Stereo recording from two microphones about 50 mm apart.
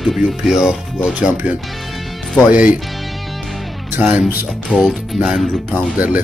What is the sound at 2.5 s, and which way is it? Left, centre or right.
Speech, right.